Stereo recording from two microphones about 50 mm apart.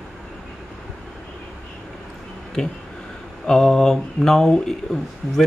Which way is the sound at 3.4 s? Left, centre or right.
Centre.